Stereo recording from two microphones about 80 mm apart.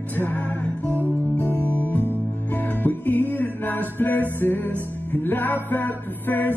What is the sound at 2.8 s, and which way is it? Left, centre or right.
Music, left.